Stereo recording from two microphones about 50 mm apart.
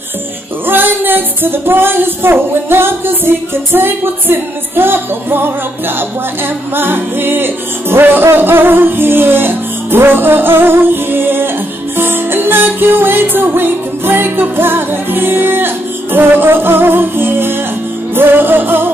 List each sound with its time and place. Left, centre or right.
0.7 s music: right